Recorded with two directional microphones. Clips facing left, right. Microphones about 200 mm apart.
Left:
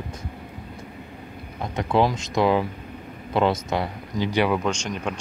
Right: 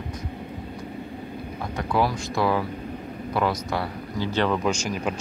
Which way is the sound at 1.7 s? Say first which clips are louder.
Left 3 dB; 20° left (ahead or behind).